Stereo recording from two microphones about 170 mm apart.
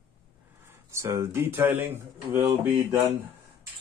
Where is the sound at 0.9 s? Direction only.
15° right (ahead or behind).